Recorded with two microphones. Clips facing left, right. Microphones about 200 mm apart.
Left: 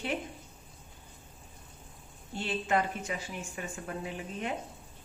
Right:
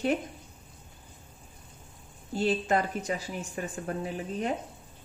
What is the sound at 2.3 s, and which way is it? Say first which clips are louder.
A woman's voice: right 4 dB; 40° right (ahead or behind).